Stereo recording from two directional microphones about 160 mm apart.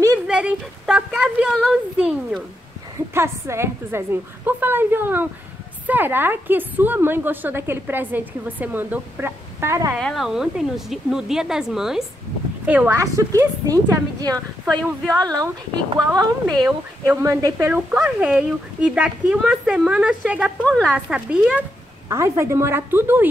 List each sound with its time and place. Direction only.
0.3 s speech: 5° right (ahead or behind)
3.2 s a woman's voice: 15° right (ahead or behind)
9.9 s a woman's voice: centre (ahead or behind)
12.9 s a woman's voice: 20° right (ahead or behind)
14.7 s a woman's voice: 5° left (ahead or behind)
15.1 s a woman's voice: 25° right (ahead or behind)
18.0 s a woman's voice: 5° right (ahead or behind)
20.6 s a woman's voice: 5° left (ahead or behind)
22.1 s a woman's voice: 15° right (ahead or behind)